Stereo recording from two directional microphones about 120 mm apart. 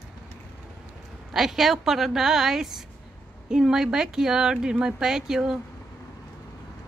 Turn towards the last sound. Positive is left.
turn(degrees=-5)  # may be behind; listen again after turning